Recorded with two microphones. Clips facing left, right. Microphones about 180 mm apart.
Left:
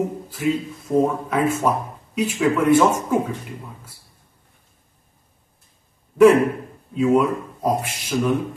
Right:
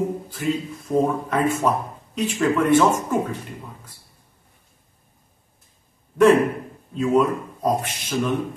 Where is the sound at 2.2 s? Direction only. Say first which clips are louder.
Left 1 dB; 5° left (ahead or behind).